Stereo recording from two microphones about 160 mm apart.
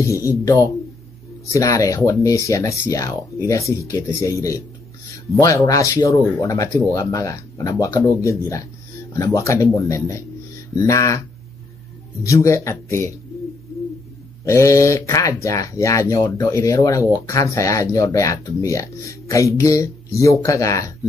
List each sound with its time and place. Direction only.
0.0 s speech: 20° left (ahead or behind)
14.4 s speech: 20° left (ahead or behind)